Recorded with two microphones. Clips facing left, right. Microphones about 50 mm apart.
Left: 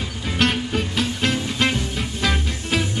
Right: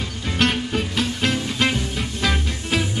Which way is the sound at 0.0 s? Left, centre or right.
Centre.